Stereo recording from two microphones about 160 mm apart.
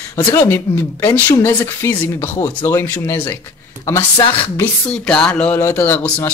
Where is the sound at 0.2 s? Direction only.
25° left (ahead or behind).